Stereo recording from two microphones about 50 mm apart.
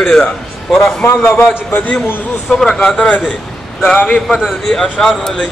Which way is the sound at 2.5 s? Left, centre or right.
Centre.